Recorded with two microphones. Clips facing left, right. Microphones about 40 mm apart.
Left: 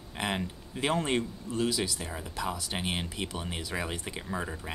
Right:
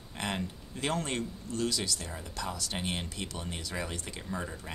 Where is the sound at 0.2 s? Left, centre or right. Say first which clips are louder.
Left 3 dB; centre.